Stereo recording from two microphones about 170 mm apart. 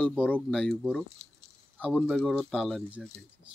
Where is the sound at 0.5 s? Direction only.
Centre (ahead or behind).